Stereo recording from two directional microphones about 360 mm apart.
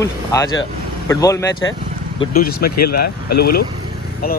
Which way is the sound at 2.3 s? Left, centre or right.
Left.